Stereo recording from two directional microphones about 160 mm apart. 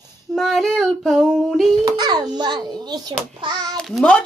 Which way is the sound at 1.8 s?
25° right (ahead or behind).